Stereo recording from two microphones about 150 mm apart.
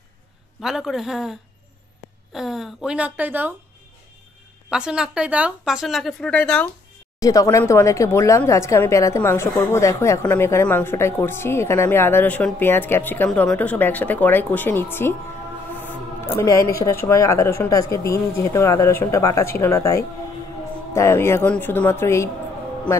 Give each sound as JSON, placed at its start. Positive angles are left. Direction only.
{"t": 0.6, "sound": "speech", "side_deg": 0}
{"t": 4.6, "sound": "speech", "side_deg": -5}
{"t": 7.2, "sound": "speech", "side_deg": 25}
{"t": 16.3, "sound": "speech", "side_deg": 20}